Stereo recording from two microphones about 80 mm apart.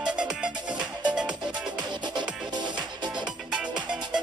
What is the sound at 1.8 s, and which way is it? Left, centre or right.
Music, right.